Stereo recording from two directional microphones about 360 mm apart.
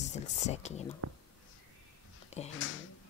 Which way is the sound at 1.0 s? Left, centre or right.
Right.